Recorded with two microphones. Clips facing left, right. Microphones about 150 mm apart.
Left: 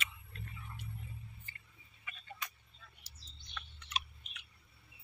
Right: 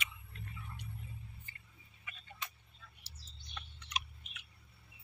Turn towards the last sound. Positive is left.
turn(degrees=-15)  # may be behind; listen again after turning